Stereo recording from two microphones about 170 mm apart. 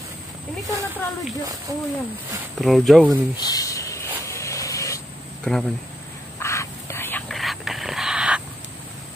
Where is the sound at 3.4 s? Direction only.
20° left (ahead or behind).